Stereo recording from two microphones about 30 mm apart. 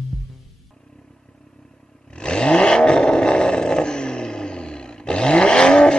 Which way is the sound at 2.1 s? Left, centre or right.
Left.